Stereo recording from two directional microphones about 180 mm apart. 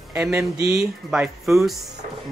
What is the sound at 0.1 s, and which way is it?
Speech, 10° right (ahead or behind).